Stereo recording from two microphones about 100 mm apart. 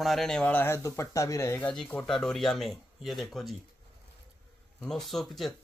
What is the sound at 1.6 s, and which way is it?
A man's voice, 10° left (ahead or behind).